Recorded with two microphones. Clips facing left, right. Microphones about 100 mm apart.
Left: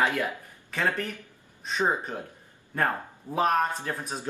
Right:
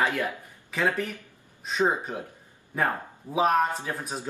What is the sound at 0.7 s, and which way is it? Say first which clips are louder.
Speech: right 2 dB; centre (ahead or behind).